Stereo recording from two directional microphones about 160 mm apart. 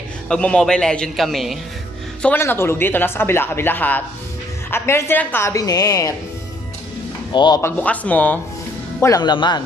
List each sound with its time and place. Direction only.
0.3 s a man's voice: 5° left (ahead or behind)
2.2 s speech: 15° left (ahead or behind)
7.3 s speech: 25° left (ahead or behind)
7.6 s speech: 10° left (ahead or behind)
9.0 s speech: 25° left (ahead or behind)